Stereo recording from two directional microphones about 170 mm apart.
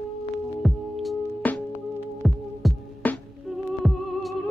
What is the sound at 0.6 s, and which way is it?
Music, centre (ahead or behind).